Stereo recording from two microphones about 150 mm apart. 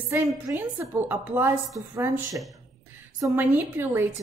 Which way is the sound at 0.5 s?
15° right (ahead or behind).